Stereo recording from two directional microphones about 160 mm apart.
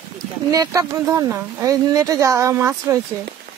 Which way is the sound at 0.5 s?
20° right (ahead or behind).